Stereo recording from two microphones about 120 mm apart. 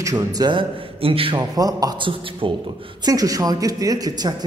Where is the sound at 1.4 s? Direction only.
30° right (ahead or behind).